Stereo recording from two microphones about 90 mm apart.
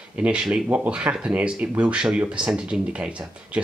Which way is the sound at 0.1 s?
10° right (ahead or behind).